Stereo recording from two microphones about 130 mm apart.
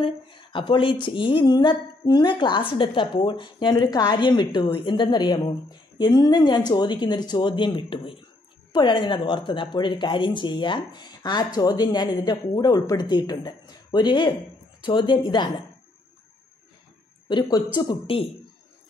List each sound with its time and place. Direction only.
0.0 s a woman's voice: 40° left (ahead or behind)
17.3 s a woman's voice: 35° left (ahead or behind)